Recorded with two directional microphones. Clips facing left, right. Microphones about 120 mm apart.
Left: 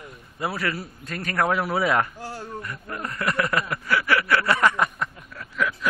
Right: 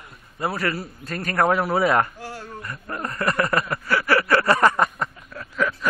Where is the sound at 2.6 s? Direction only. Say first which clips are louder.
Right 2 dB; 40° right (ahead or behind).